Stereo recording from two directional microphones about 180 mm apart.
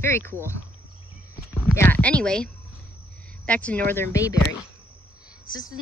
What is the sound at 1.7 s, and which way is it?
Speech, 10° left (ahead or behind).